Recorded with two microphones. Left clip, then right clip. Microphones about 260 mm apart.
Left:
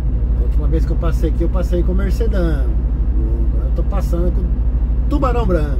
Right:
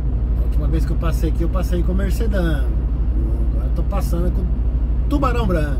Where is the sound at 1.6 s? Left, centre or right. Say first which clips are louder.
Left 3 dB; centre.